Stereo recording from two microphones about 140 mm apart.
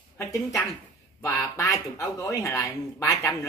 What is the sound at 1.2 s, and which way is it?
Speech, 25° left (ahead or behind).